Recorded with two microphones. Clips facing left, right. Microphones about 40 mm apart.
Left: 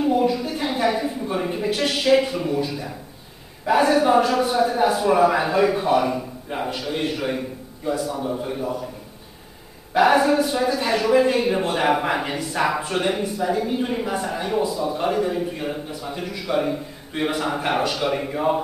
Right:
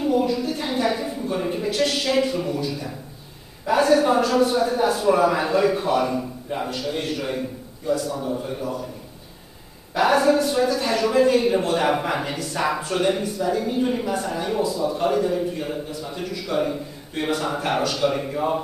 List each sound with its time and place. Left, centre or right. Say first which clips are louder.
0.0 s a sound: left 1 dB; centre
3.6 s a man's voice: even; centre
9.9 s a man's voice: left 1 dB; centre